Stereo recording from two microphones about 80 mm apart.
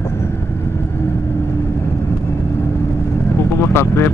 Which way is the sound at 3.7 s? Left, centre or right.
Left.